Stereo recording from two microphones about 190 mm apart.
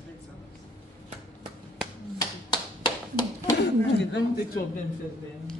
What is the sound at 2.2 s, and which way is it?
Clapping, 20° left (ahead or behind).